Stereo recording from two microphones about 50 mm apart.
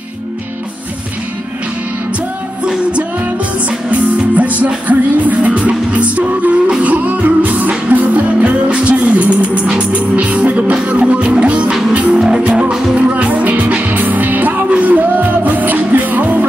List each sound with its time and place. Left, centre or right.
4.4 s music: right
12.2 s music: centre; by 16.4 s right